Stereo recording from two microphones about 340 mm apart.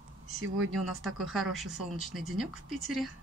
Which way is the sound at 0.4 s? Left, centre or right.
Right.